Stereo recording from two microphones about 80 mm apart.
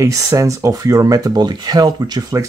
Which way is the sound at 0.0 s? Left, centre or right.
Right.